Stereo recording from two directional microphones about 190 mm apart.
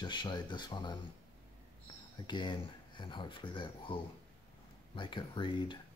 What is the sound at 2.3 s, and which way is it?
Speech, 25° left (ahead or behind).